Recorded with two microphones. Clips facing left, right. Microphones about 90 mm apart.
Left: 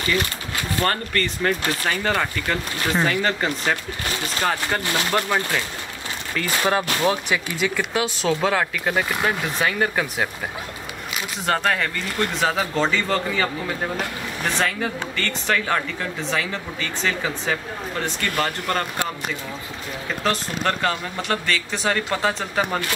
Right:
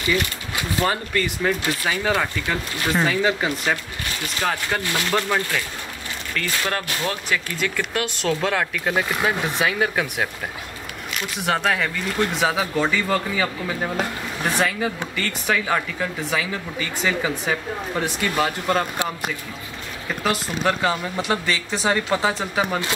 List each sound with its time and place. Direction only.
0.1 s speech: 10° right (ahead or behind); by 5.4 s 5° left (ahead or behind)
6.6 s speech: 15° left (ahead or behind); by 10.2 s centre (ahead or behind)
11.4 s speech: 5° right (ahead or behind)
20.2 s speech: 10° right (ahead or behind)